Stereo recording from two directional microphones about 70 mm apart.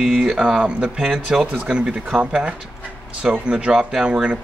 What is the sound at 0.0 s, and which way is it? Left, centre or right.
Speech, centre.